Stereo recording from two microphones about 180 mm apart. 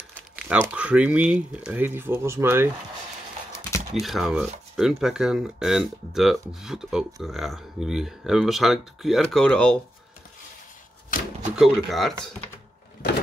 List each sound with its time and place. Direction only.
0.1 s speech: 5° right (ahead or behind)
3.9 s speech: centre (ahead or behind)
11.1 s speech: 50° left (ahead or behind)
11.5 s speech: centre (ahead or behind)